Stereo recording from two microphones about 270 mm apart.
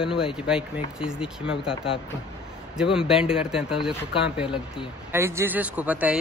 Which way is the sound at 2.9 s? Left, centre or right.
Centre.